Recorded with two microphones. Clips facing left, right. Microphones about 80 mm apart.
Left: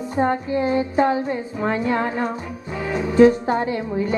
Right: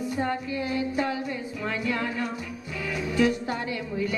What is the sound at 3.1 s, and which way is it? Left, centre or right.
A woman's voice, left.